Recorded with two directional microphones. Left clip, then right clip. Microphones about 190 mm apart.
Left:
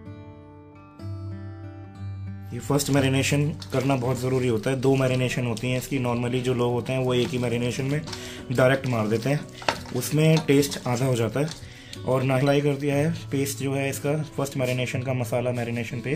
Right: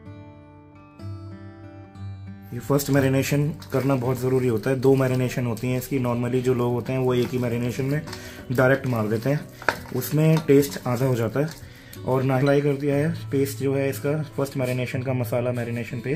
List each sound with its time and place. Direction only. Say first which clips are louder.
2.6 s speech: right 2 dB; 35° right (ahead or behind)